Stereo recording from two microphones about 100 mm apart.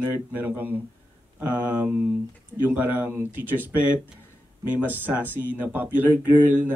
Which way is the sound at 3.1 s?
20° right (ahead or behind).